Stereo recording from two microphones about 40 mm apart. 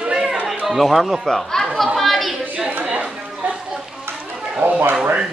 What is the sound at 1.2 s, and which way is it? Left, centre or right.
Speech, centre.